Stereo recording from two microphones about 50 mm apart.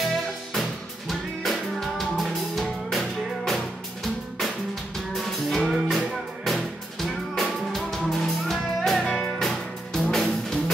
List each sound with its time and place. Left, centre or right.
0.5 s music: centre
9.0 s music: centre
9.4 s music: centre